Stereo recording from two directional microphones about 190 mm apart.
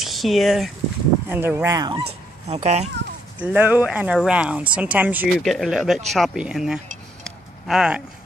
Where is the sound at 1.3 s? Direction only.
10° right (ahead or behind).